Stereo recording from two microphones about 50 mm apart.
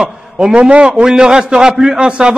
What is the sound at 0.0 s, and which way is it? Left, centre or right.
A man's voice, centre.